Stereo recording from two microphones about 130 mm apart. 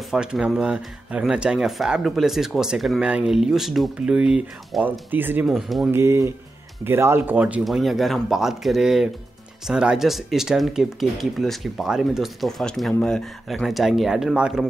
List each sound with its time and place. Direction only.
0.1 s speech: 5° right (ahead or behind)
5.5 s speech: centre (ahead or behind)
5.9 s speech: 20° right (ahead or behind)
7.6 s speech: centre (ahead or behind)